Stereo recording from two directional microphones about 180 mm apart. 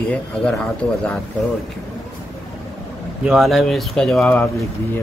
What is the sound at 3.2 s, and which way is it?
Speech, centre (ahead or behind).